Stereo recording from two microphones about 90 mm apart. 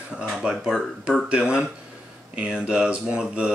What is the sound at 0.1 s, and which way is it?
Speech, 10° right (ahead or behind).